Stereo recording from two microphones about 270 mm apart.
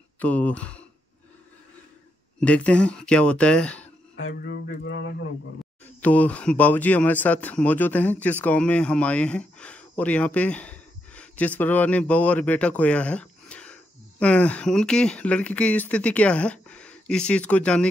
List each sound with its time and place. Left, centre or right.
0.2 s speech: centre
2.4 s speech: centre
4.2 s speech: left
5.9 s speech: centre